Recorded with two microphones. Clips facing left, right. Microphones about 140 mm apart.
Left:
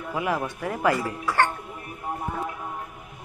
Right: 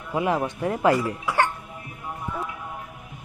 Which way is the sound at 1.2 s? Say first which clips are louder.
Even; 10° right (ahead or behind).